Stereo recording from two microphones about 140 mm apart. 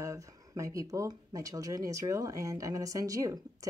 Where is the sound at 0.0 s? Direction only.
25° right (ahead or behind).